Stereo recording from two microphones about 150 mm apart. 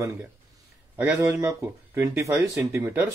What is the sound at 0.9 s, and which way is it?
Speech, 10° right (ahead or behind).